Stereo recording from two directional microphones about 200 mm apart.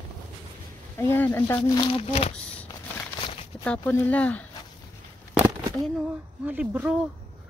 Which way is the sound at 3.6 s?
5° left (ahead or behind).